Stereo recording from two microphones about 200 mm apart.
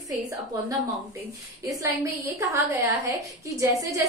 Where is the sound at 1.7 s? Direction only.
15° right (ahead or behind).